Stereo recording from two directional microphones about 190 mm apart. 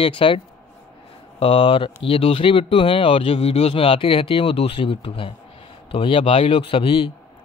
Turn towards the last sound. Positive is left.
turn(degrees=30)  # may be behind; listen again after turning